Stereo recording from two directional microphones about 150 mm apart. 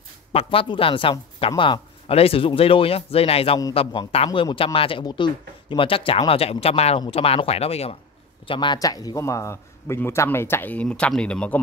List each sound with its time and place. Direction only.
0.3 s speech: 40° left (ahead or behind)
8.5 s a man's voice: 30° left (ahead or behind); by 11.6 s 10° left (ahead or behind)